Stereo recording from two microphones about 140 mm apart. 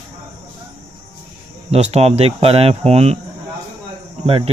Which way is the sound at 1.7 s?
45° right (ahead or behind).